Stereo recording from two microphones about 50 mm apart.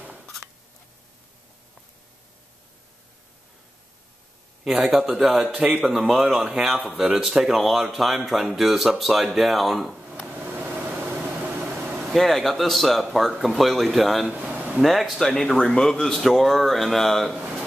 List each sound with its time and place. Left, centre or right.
4.6 s speech: centre
5.5 s speech: right
5.9 s speech: centre
6.3 s speech: right
6.6 s speech: centre
10.2 s a sound: right
11.7 s vehicle: right
12.1 s speech: centre
14.2 s a sound: right
14.8 s speech: centre
15.5 s a man's voice: centre
15.9 s speech: centre